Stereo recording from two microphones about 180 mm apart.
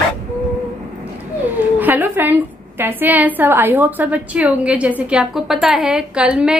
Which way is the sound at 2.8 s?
10° right (ahead or behind).